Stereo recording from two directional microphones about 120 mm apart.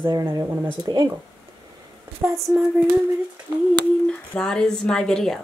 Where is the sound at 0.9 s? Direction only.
35° right (ahead or behind).